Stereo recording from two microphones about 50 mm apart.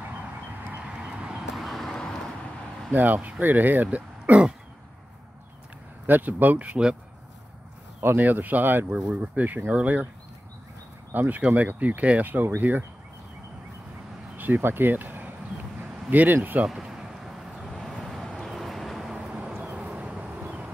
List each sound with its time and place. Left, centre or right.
0.8 s a sound: centre
1.5 s vehicle: centre
2.9 s speech: right
6.0 s speech: right
8.2 s speech: right
8.9 s speech: right
11.1 s speech: right
14.3 s speech: right
15.8 s a sound: right
16.6 s vehicle: centre
19.1 s vehicle: right